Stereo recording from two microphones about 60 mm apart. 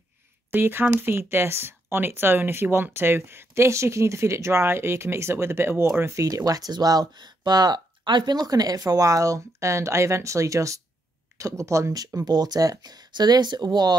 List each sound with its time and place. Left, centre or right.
0.5 s speech: right
6.2 s speech: right
8.5 s speech: right